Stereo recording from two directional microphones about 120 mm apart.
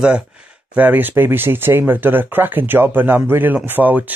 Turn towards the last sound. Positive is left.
turn(degrees=-15)  # may be behind; listen again after turning